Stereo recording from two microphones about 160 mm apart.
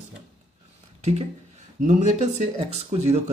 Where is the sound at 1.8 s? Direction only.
50° right (ahead or behind).